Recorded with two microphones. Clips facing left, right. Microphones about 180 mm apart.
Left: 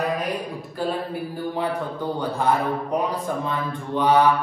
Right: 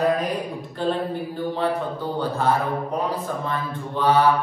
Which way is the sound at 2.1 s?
15° left (ahead or behind).